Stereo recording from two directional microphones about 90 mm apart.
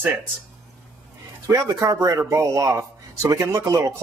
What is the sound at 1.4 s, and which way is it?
Speech, 35° right (ahead or behind).